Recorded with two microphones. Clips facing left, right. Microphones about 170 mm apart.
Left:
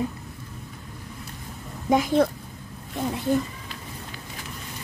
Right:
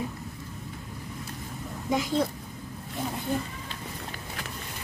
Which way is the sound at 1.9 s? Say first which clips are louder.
Left 6 dB; 60° left (ahead or behind).